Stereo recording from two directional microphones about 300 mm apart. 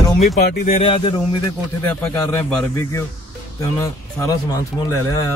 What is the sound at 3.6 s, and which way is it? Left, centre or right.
Speech, centre.